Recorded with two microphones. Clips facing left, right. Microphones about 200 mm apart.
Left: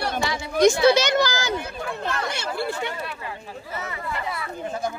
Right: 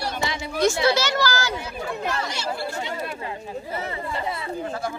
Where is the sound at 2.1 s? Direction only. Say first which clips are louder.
Left 1 dB; 55° left (ahead or behind).